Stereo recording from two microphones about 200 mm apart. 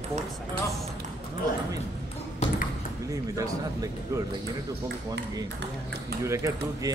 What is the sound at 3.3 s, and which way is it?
Speech, 15° right (ahead or behind).